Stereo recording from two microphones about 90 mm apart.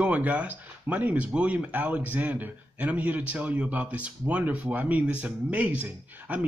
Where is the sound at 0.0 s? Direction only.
15° right (ahead or behind).